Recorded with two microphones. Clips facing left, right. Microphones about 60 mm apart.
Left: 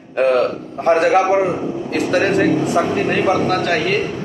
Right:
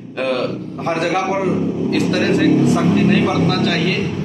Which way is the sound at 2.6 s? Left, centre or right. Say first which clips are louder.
Right 2 dB; left.